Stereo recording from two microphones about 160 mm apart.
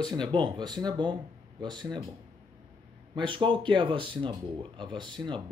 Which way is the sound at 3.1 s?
30° right (ahead or behind).